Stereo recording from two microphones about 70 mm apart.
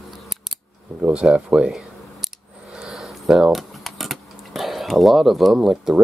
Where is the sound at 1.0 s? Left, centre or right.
Centre.